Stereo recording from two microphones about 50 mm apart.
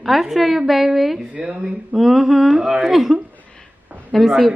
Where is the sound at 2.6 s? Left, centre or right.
Centre.